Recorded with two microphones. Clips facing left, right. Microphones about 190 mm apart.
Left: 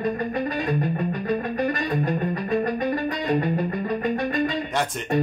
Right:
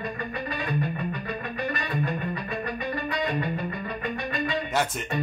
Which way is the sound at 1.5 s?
45° left (ahead or behind).